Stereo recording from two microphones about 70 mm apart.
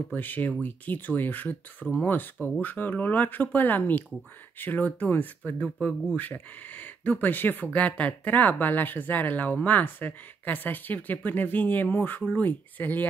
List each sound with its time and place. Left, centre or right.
0.1 s speech: left